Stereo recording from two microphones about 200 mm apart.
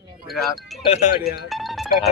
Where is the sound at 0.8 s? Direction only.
30° left (ahead or behind).